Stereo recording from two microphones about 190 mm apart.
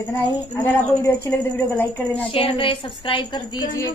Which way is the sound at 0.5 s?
10° left (ahead or behind).